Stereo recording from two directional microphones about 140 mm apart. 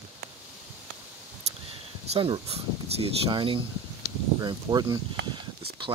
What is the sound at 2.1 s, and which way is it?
Speech, 40° right (ahead or behind).